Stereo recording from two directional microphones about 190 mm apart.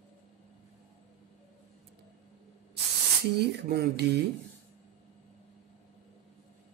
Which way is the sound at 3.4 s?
60° right (ahead or behind).